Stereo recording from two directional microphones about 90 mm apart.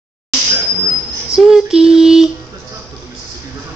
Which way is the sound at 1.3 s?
5° right (ahead or behind).